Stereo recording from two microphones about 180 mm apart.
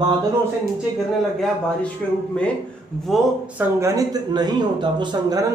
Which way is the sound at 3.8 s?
20° right (ahead or behind).